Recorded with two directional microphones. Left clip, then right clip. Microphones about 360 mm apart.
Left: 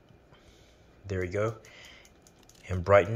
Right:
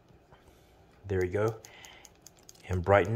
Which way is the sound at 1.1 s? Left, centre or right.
Centre.